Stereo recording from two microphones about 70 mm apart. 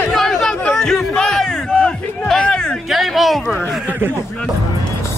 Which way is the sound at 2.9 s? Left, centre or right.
Centre.